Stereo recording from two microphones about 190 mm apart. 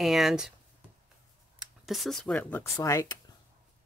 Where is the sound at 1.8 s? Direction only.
Centre (ahead or behind); by 3.2 s 15° left (ahead or behind).